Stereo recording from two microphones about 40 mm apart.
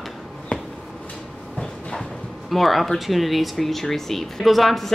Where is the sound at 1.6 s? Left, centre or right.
Centre.